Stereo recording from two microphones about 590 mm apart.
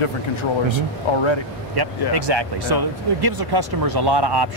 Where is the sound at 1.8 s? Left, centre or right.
Right.